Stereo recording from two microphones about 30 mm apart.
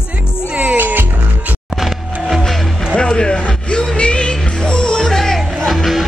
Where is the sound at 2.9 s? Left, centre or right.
Left.